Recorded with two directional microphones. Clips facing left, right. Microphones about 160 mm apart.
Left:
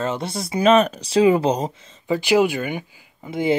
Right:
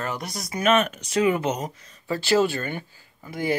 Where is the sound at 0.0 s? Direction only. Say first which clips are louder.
Left 6 dB; 25° left (ahead or behind).